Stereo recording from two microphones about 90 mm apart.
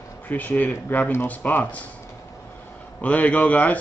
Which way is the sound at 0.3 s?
20° left (ahead or behind).